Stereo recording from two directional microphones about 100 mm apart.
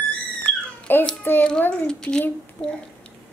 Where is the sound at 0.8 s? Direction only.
10° left (ahead or behind).